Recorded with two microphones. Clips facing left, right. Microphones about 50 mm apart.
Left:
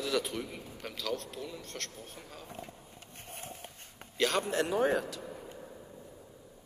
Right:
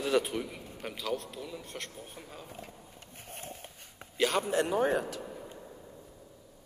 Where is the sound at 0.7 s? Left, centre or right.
Centre.